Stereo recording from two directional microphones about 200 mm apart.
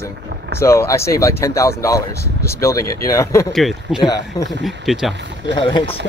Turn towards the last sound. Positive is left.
turn(degrees=25)  # may be behind; listen again after turning